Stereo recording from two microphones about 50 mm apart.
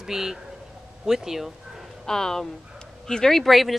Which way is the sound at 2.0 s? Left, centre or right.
Centre.